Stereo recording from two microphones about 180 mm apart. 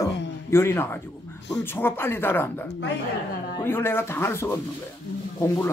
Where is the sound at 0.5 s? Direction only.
15° left (ahead or behind).